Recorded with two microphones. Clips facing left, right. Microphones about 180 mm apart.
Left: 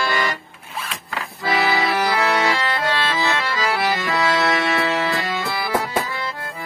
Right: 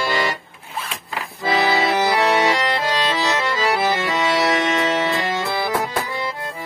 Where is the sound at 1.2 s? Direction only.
20° right (ahead or behind).